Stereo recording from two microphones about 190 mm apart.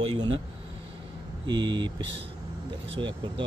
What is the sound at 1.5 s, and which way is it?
Speech, 25° right (ahead or behind).